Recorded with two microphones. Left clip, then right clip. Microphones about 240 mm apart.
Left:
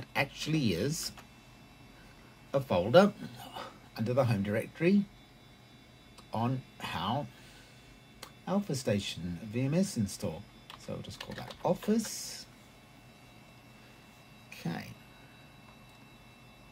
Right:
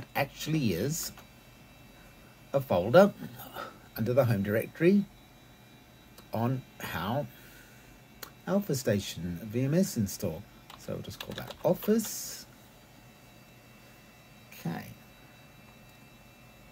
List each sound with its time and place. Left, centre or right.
0.0 s speech: centre
2.5 s speech: centre
6.3 s speech: right
14.5 s music: centre